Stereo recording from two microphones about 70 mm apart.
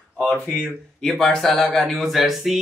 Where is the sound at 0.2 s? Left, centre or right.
Left.